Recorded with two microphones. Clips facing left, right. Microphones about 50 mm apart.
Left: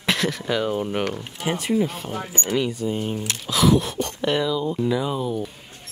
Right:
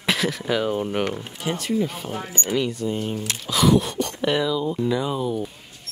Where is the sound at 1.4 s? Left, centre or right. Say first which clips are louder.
Left 2 dB; centre.